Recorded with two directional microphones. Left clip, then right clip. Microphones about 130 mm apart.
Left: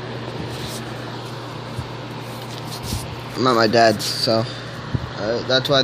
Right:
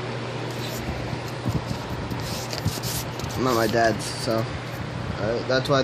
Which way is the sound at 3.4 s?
30° left (ahead or behind).